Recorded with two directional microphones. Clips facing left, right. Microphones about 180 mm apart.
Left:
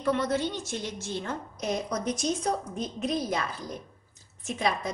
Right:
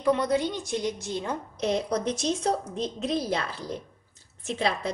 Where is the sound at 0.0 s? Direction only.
15° right (ahead or behind).